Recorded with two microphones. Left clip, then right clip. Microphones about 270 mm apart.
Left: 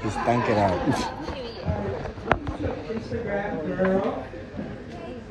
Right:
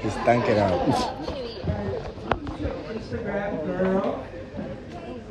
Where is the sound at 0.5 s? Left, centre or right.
Centre.